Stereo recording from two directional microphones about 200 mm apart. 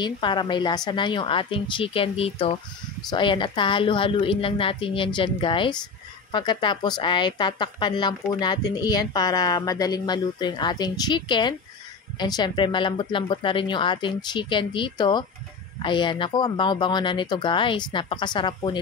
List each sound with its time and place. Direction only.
0.0 s a woman's voice: 25° left (ahead or behind)